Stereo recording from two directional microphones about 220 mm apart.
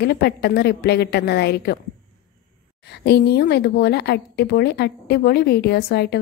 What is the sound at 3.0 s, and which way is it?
A woman's voice, 50° left (ahead or behind).